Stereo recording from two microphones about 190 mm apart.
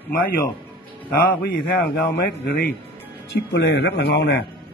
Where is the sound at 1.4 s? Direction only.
55° left (ahead or behind).